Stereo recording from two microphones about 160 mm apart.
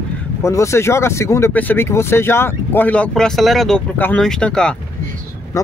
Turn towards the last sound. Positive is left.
turn(degrees=5)  # may be behind; listen again after turning